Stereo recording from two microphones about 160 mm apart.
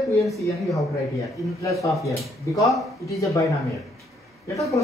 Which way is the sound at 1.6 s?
20° left (ahead or behind).